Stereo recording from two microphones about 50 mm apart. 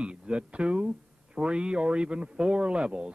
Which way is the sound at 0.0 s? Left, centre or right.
Right.